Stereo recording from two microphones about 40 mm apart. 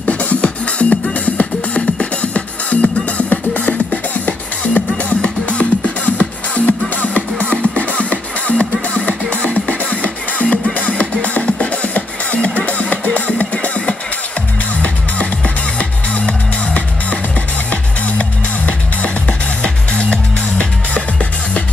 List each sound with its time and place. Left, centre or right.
0.0 s music: left
19.6 s music: left